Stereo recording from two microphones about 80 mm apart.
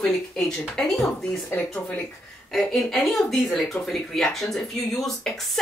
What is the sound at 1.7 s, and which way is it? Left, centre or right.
Speech, centre.